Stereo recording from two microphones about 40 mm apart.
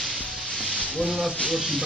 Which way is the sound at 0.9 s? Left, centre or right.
Centre.